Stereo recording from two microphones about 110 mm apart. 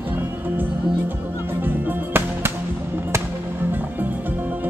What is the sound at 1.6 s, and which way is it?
Music, 20° right (ahead or behind).